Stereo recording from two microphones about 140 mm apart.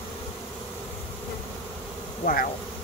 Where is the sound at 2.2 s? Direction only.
90° left.